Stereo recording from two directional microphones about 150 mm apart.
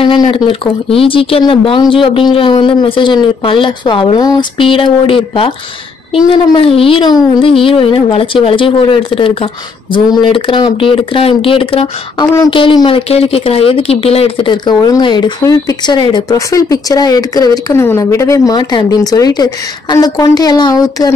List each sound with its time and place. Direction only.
0.0 s speech: 35° left (ahead or behind)
6.5 s speech: 35° left (ahead or behind)